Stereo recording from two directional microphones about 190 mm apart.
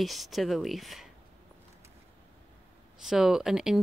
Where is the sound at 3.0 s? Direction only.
Centre (ahead or behind).